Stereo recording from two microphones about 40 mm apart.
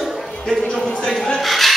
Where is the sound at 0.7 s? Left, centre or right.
Centre.